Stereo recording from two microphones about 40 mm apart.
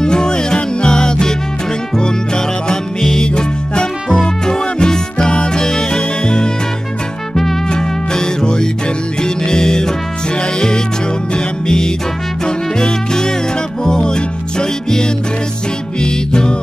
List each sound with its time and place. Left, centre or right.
0.0 s music: centre
7.7 s music: centre
11.3 s music: centre